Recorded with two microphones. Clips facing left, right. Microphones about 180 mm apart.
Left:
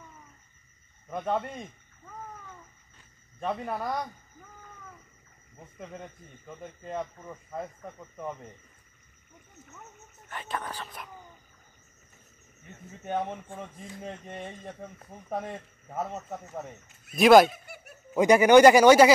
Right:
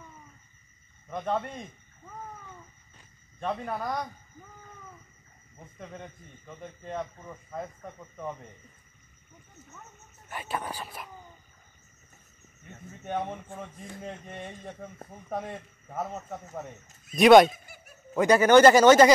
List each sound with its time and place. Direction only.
1.1 s a man's voice: 5° left (ahead or behind)
3.3 s a man's voice: 5° left (ahead or behind)
5.6 s a man's voice: 5° left (ahead or behind)
10.3 s speech: 10° right (ahead or behind)
13.0 s a man's voice: centre (ahead or behind)
14.8 s a man's voice: centre (ahead or behind)
17.7 s a sound: 70° left (ahead or behind)
18.1 s speech: 15° left (ahead or behind)